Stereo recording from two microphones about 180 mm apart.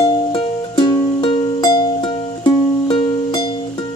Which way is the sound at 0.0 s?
25° left (ahead or behind).